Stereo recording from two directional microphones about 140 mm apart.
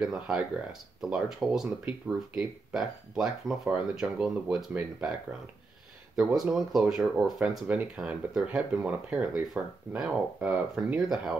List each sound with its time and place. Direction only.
0.0 s speech: 5° right (ahead or behind)
6.1 s speech: centre (ahead or behind)